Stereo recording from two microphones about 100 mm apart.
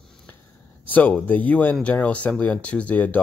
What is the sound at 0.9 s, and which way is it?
Speech, 15° left (ahead or behind).